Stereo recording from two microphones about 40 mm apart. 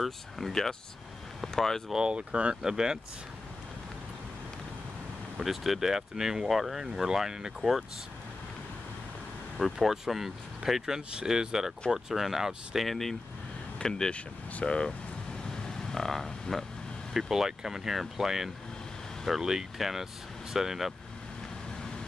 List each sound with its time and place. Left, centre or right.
0.0 s speech: centre
2.0 s speech: right
2.6 s speech: centre
5.4 s speech: centre
6.5 s speech: centre
9.8 s speech: centre
11.0 s speech: right
11.2 s speech: centre
12.8 s speech: centre
13.7 s speech: centre
14.1 s speech: left
15.4 s vehicle: centre
17.3 s speech: centre